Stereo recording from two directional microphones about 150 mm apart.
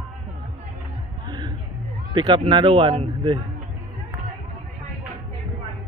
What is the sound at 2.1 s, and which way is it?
Speech, 30° right (ahead or behind).